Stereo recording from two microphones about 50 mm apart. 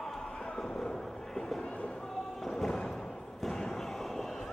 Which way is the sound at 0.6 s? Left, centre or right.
Centre.